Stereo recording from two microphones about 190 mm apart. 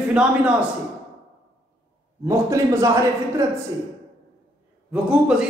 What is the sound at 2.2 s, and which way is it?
A man's voice, 15° right (ahead or behind).